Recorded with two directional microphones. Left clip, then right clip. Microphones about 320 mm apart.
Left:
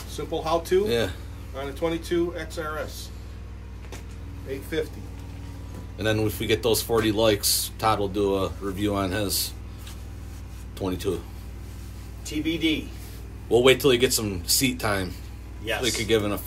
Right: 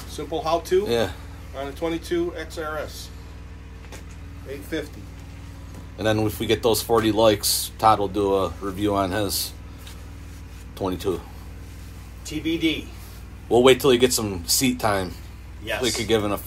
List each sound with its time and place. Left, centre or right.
0.1 s speech: centre
0.8 s speech: centre
1.5 s speech: centre
4.5 s speech: centre
5.9 s speech: centre
10.8 s speech: centre
12.3 s speech: centre
13.5 s speech: centre